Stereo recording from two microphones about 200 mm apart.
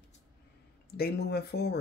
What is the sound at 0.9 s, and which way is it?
Speech, 50° left (ahead or behind).